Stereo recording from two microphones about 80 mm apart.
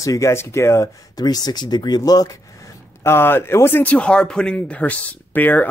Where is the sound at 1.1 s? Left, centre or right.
Left.